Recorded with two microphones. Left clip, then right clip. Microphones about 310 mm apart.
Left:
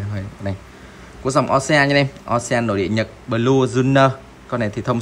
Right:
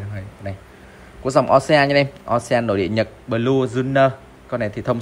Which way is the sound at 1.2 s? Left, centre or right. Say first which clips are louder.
Right 2 dB; centre.